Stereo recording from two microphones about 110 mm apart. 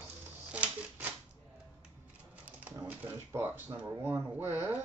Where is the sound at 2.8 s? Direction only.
20° right (ahead or behind).